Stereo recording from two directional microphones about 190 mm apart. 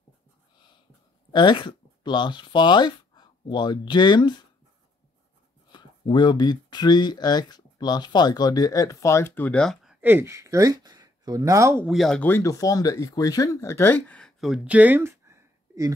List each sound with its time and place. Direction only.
1.3 s speech: 25° left (ahead or behind)
5.7 s speech: 25° left (ahead or behind); by 9.9 s 5° left (ahead or behind)
10.0 s speech: 10° right (ahead or behind)